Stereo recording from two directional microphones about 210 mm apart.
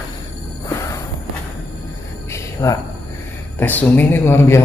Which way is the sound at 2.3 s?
15° left (ahead or behind).